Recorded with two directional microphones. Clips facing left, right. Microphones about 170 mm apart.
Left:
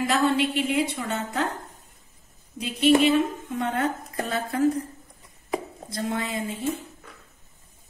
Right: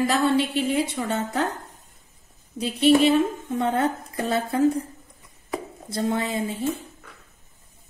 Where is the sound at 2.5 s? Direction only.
35° right (ahead or behind).